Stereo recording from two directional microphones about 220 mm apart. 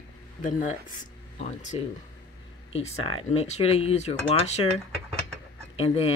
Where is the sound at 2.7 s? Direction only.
25° left (ahead or behind).